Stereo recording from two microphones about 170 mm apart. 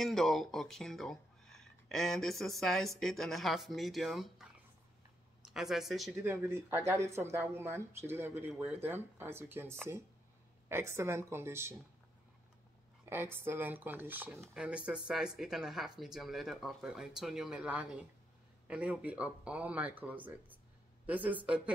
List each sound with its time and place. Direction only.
0.0 s speech: centre (ahead or behind)
5.5 s speech: centre (ahead or behind)
6.1 s speech: 15° right (ahead or behind)
13.1 s speech: 15° right (ahead or behind)